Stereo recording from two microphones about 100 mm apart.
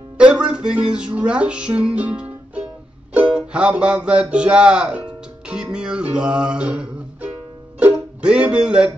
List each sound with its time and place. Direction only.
0.2 s music: 10° right (ahead or behind)